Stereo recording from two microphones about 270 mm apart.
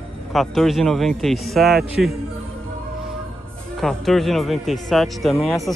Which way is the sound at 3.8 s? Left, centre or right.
Centre.